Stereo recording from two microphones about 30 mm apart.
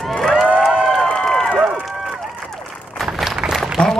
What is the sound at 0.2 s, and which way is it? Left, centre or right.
Crowd, centre.